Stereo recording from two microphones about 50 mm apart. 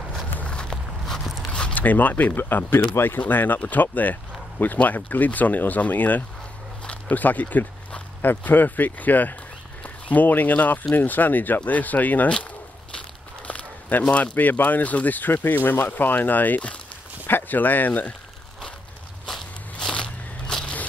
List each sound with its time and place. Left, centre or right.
0.4 s walk: left
1.0 s biting: centre
1.5 s zipper: left
1.8 s speech: left
6.8 s a sound: left
7.2 s speech: left
13.5 s a sound: left
14.1 s speech: left
17.3 s speech: left
19.2 s walk: centre
19.9 s biting: centre